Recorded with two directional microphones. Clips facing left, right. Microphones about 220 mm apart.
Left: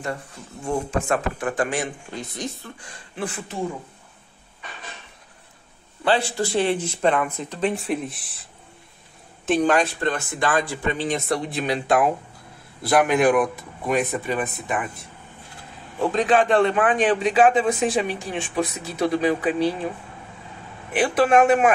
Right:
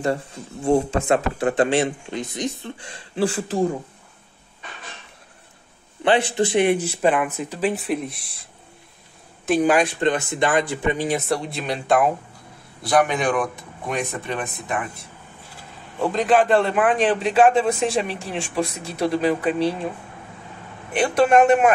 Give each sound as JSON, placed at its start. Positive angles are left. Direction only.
{"t": 0.7, "sound": "speech", "side_deg": -30}
{"t": 6.0, "sound": "a man's voice", "side_deg": -20}
{"t": 9.5, "sound": "a man's voice", "side_deg": -10}
{"t": 16.0, "sound": "a man's voice", "side_deg": 0}
{"t": 20.9, "sound": "a man's voice", "side_deg": 5}